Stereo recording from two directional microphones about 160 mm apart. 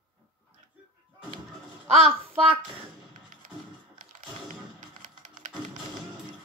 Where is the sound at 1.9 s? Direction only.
40° right (ahead or behind).